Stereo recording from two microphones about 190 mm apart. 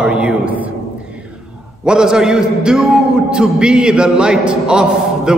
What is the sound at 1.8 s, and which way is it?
A woman's voice, 5° right (ahead or behind).